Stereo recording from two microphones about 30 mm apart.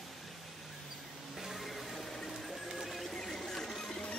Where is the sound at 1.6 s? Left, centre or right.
Centre.